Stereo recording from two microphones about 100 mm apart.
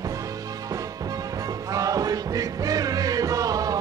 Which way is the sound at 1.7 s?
35° right (ahead or behind).